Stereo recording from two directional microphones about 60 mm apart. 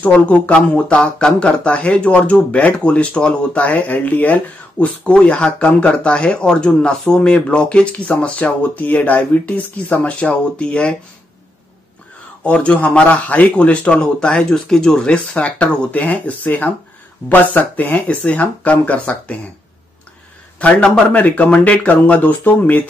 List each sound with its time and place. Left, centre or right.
0.0 s speech: centre
12.4 s speech: left
20.5 s speech: centre